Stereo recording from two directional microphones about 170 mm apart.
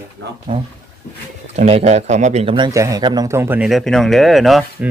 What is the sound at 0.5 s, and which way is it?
Speech, 30° right (ahead or behind).